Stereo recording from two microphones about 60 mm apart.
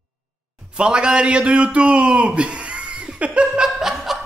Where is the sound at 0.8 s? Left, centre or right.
Centre.